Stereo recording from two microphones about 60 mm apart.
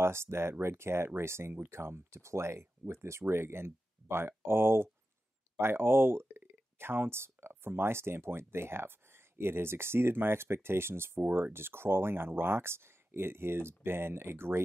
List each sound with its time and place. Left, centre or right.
0.0 s speech: right